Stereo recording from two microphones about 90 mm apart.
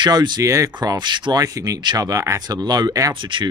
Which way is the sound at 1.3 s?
40° right (ahead or behind).